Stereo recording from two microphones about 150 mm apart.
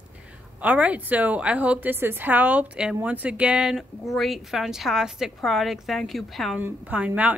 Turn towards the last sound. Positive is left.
turn(degrees=-10)  # may be behind; listen again after turning